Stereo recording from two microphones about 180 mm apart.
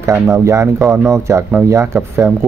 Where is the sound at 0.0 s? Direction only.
15° right (ahead or behind).